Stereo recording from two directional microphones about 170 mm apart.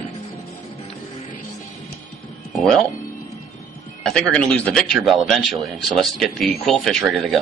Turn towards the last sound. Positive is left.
turn(degrees=0)  # may be behind; listen again after turning